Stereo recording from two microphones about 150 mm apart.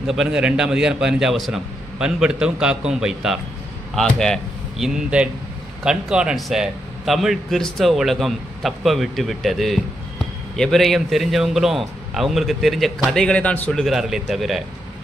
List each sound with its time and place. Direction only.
0.0 s a man's voice: 5° right (ahead or behind)